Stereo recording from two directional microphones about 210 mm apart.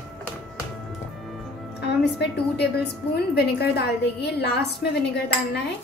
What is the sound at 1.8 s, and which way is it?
A woman's voice, 50° left (ahead or behind).